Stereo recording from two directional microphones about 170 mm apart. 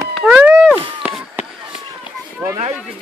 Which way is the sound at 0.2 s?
5° right (ahead or behind).